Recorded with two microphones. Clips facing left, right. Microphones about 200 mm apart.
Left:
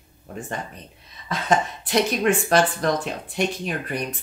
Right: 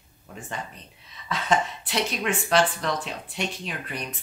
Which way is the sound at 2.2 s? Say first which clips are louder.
Even; 45° left (ahead or behind).